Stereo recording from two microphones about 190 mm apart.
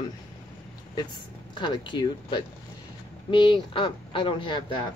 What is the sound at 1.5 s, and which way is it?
Speech, 25° left (ahead or behind).